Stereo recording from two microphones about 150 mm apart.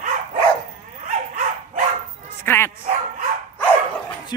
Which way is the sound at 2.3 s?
15° left (ahead or behind).